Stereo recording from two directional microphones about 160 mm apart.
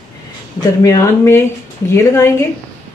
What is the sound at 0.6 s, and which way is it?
Speech, 20° left (ahead or behind).